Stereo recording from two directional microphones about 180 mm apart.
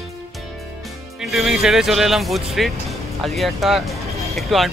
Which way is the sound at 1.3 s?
Centre (ahead or behind).